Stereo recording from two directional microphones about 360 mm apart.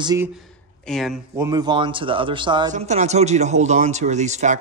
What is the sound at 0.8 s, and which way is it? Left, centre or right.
Speech, centre.